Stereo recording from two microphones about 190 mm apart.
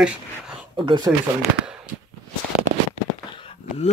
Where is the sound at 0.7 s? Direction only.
25° right (ahead or behind).